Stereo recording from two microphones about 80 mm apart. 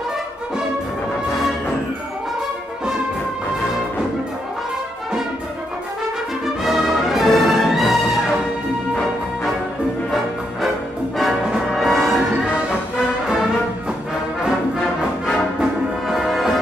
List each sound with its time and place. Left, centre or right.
6.6 s music: centre
11.1 s music: centre
14.8 s music: centre
15.6 s music: centre